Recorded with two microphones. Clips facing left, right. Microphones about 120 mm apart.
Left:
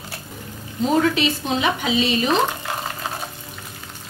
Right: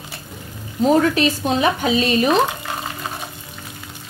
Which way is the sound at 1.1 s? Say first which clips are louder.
Right 3 dB; 45° right (ahead or behind).